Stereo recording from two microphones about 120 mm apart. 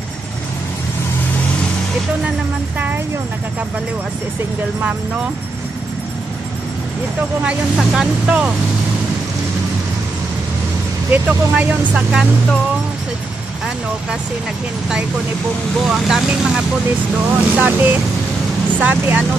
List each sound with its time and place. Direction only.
7.4 s speech: 5° right (ahead or behind)
11.1 s speech: 10° right (ahead or behind)
15.9 s speech: 5° right (ahead or behind)
17.3 s speech: 15° right (ahead or behind)
18.8 s speech: 15° right (ahead or behind)